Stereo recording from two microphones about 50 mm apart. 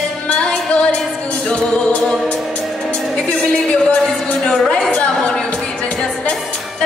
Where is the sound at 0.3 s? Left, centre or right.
Left.